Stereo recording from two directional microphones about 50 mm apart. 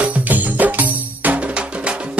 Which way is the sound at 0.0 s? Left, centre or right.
Right.